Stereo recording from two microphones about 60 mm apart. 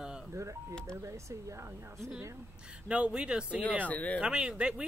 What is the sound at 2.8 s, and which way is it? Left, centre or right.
Speech, centre.